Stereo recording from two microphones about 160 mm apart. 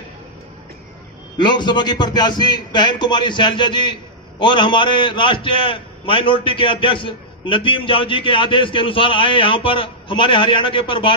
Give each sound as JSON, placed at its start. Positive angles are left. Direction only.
{"t": 1.4, "sound": "a man's voice", "side_deg": 30}